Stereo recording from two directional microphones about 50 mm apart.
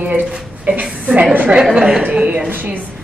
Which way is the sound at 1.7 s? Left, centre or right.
Centre.